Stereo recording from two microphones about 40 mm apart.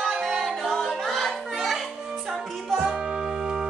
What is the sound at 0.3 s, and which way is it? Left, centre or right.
Music, centre.